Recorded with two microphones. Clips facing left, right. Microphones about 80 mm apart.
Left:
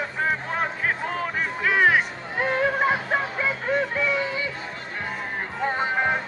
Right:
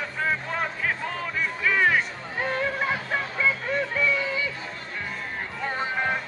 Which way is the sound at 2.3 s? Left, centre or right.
Left.